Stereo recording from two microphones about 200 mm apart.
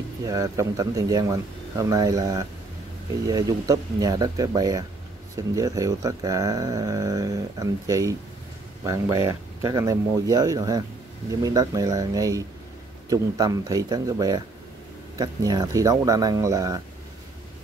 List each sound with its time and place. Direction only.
0.2 s speech: 15° right (ahead or behind)